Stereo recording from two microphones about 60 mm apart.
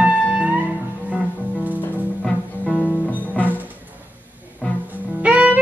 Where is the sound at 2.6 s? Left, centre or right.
Left.